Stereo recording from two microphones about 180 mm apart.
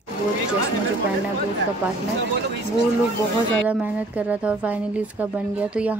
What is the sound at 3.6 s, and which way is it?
A woman's voice, 5° right (ahead or behind).